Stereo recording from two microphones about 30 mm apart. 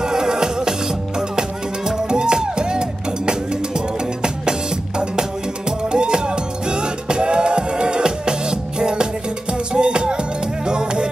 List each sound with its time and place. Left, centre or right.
0.0 s music: right
2.0 s music: right